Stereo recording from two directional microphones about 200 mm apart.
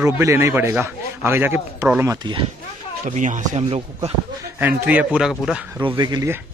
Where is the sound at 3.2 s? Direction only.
40° right (ahead or behind).